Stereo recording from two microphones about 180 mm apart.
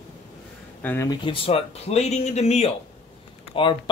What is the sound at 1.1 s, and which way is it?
Speech, 30° left (ahead or behind).